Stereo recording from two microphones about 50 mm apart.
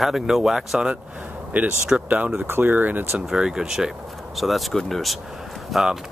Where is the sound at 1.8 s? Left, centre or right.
Right.